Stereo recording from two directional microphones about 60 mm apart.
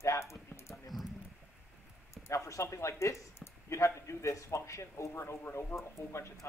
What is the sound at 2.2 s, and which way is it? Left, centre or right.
Speech, left.